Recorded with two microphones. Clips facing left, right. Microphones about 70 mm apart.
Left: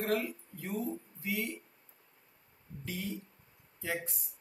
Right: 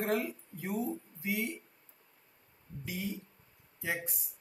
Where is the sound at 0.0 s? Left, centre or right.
Centre.